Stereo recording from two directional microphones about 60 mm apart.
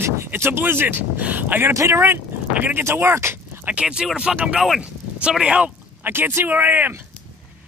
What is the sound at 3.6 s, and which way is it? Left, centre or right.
Speech, centre.